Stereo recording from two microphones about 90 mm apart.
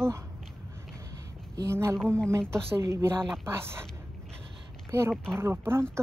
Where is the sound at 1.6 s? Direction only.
30° right (ahead or behind).